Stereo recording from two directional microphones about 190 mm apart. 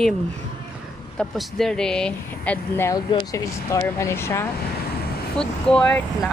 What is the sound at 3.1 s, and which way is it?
Speech, 20° left (ahead or behind).